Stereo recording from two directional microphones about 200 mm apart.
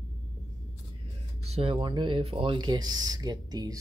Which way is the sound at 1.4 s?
30° right (ahead or behind).